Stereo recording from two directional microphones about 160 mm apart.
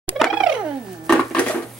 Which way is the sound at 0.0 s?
Centre (ahead or behind).